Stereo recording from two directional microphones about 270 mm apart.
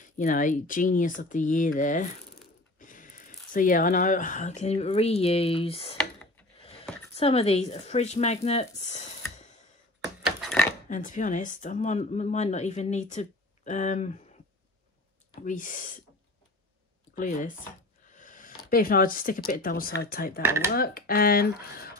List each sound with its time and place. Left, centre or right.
0.0 s speech: left
6.6 s a sound: left
7.2 s speech: left
10.0 s a sound: centre
10.9 s speech: left
15.4 s speech: left
17.1 s speech: left
18.0 s a sound: left
18.7 s speech: left
20.4 s speech: centre
20.7 s speech: left